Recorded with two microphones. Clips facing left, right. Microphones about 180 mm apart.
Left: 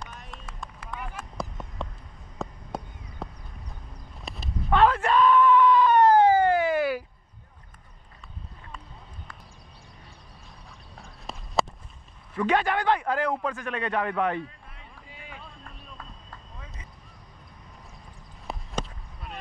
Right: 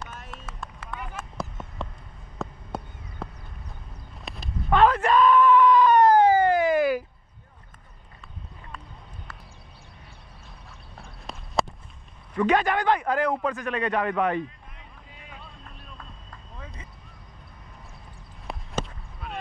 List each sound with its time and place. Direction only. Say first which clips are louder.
0.0 s vehicle: right 2 dB; centre (ahead or behind)
1.4 s a sound: even; centre (ahead or behind)
4.7 s screaming: right 2 dB; 10° right (ahead or behind)
11.0 s clip-clop: even; centre (ahead or behind)
12.4 s a man's voice: right 2 dB; 10° right (ahead or behind)
15.1 s music: left 2 dB; centre (ahead or behind)
18.5 s a sound: right 2 dB; centre (ahead or behind)